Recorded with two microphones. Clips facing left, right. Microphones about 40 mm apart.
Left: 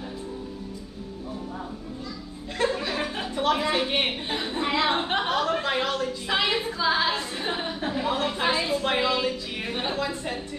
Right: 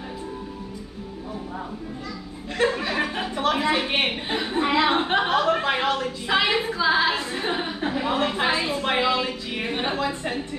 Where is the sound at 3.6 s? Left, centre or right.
Right.